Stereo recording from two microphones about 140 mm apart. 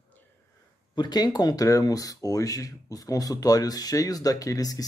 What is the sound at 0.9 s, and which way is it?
Speech, 30° left (ahead or behind).